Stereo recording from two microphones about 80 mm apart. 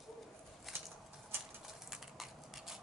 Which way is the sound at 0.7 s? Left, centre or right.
Centre.